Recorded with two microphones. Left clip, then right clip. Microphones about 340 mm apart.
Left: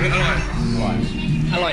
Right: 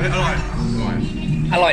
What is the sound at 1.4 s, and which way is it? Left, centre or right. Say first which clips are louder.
Speech: right 6 dB; right.